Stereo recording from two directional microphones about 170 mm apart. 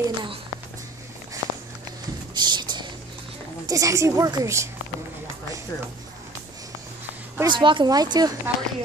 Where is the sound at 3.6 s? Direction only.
20° right (ahead or behind).